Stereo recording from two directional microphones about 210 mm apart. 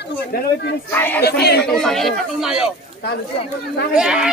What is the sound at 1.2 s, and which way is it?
Speech, 50° left (ahead or behind).